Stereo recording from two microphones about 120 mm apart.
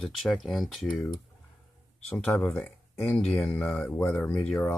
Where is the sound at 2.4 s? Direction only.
5° left (ahead or behind).